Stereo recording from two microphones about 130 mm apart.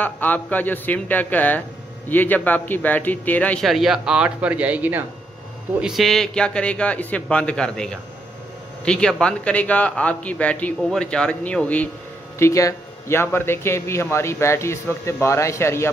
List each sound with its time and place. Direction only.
0.0 s a man's voice: 15° left (ahead or behind)
3.6 s a man's voice: centre (ahead or behind)
12.4 s a man's voice: 25° left (ahead or behind)